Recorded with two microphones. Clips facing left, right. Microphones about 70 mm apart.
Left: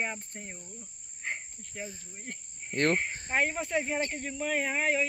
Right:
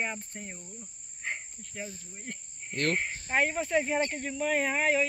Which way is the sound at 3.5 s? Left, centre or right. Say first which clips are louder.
Right 3 dB; centre.